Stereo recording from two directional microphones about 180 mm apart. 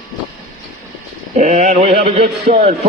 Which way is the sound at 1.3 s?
40° right (ahead or behind).